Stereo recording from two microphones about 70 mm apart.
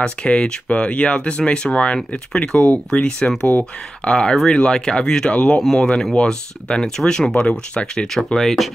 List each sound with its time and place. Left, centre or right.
0.0 s speech: centre